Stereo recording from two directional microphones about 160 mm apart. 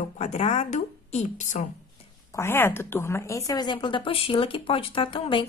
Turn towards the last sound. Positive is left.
turn(degrees=30)  # may be behind; listen again after turning